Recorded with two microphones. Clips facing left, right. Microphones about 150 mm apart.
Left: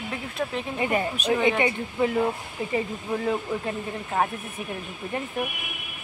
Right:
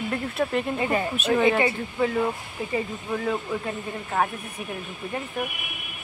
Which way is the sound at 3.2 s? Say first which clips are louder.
Left 1 dB; 25° left (ahead or behind).